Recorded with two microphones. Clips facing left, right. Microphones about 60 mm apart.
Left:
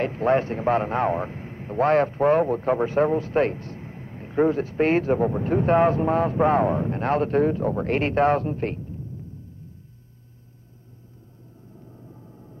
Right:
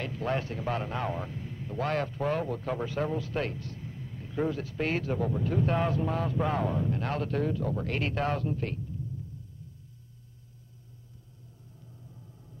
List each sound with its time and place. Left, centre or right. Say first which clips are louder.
0.0 s a man's voice: left 11 dB; left
11.8 s vehicle: left 6 dB; left